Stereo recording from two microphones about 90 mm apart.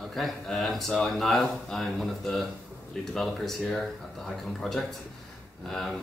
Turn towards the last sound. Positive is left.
turn(degrees=5)  # may be behind; listen again after turning